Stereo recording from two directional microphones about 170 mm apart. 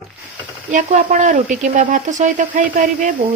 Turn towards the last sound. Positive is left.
turn(degrees=-50)  # may be behind; listen again after turning